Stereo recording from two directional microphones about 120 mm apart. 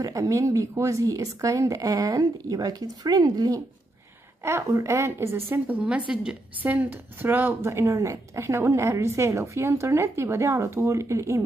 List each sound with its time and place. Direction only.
0.0 s a woman's voice: 30° right (ahead or behind)